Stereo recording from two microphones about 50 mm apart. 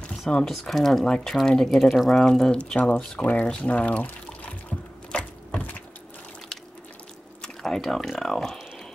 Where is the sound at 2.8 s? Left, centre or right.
Centre.